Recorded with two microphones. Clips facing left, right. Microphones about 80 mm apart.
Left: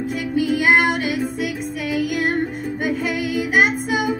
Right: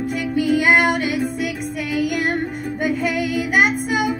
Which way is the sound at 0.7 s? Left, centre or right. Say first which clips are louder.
Even; left.